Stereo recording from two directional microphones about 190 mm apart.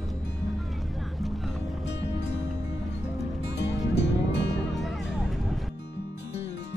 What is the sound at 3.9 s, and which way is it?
Music, 65° left (ahead or behind).